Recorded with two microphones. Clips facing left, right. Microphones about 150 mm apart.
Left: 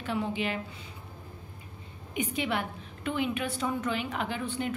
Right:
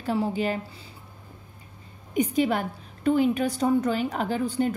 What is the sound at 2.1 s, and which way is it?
A woman's voice, 40° right (ahead or behind).